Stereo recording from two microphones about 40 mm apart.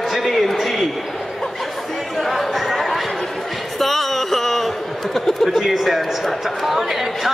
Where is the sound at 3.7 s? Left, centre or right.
Centre.